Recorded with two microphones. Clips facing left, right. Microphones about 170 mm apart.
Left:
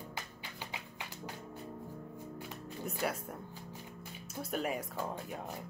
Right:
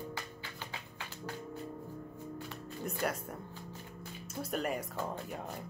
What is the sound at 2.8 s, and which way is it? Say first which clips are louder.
A woman's voice: right 1 dB; centre (ahead or behind).